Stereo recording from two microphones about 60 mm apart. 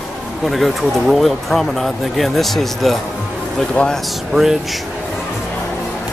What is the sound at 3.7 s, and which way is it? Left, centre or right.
Speech, centre.